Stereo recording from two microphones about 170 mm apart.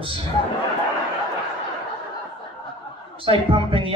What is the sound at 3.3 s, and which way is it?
Speech, 30° right (ahead or behind).